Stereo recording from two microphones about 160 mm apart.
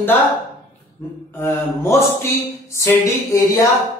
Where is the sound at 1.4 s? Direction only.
15° left (ahead or behind).